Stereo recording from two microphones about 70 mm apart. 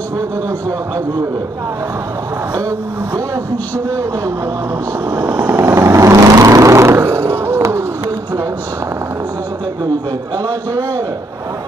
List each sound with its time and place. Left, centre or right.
5.2 s vehicle: right